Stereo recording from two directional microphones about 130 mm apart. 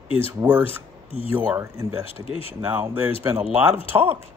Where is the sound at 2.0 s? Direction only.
45° left (ahead or behind).